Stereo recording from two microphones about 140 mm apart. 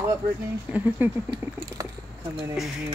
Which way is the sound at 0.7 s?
10° right (ahead or behind).